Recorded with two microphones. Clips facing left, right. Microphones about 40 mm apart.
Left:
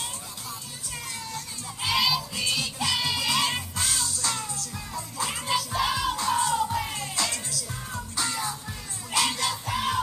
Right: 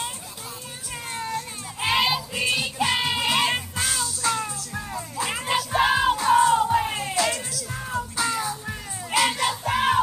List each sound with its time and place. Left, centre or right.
1.1 s child singing: right
3.7 s music: centre
5.4 s music: right
8.2 s music: centre
9.4 s music: right